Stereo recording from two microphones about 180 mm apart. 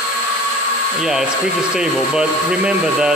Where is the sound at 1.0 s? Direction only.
5° right (ahead or behind).